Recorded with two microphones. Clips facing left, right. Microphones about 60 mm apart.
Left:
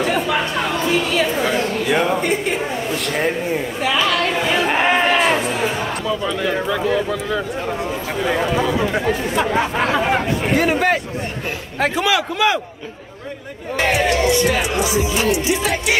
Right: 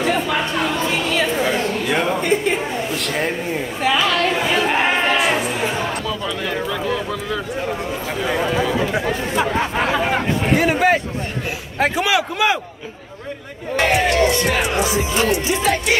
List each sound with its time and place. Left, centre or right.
0.8 s a sound: centre
2.9 s speech: centre
4.4 s chatter: centre
6.0 s speech: centre
14.0 s speech: centre
14.8 s music: right